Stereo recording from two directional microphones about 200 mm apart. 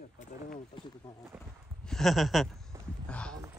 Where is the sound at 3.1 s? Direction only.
5° left (ahead or behind).